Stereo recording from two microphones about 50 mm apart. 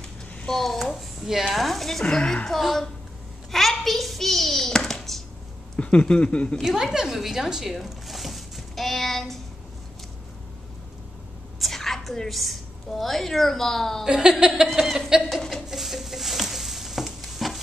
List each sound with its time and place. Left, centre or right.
0.5 s a child's voice: centre
2.0 s speech: centre
2.6 s speech: centre
3.5 s hands: centre
5.8 s speech: left
6.6 s zipper: centre
11.6 s a woman's voice: centre
14.0 s a woman's voice: centre
14.7 s chuckle: centre
15.7 s stir: centre